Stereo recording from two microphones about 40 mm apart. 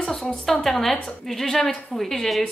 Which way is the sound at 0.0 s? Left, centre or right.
Centre.